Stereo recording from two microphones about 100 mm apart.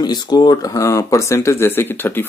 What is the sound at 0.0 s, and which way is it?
Speech, 45° left (ahead or behind).